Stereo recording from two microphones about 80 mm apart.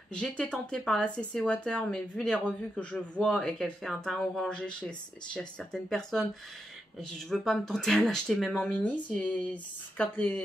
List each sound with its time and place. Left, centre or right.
0.1 s speech: centre
8.7 s speech: centre